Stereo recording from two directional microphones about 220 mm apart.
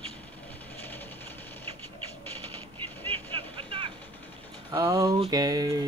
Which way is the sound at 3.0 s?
10° left (ahead or behind).